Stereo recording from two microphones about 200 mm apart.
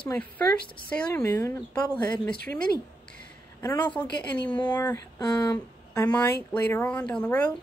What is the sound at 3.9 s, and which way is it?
Speech, 5° left (ahead or behind).